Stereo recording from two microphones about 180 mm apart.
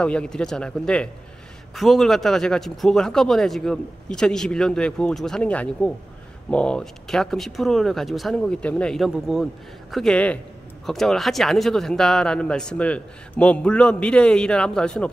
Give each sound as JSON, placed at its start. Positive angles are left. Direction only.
{"t": 0.0, "sound": "speech", "side_deg": 5}